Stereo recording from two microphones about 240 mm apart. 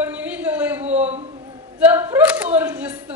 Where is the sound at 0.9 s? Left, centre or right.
Right.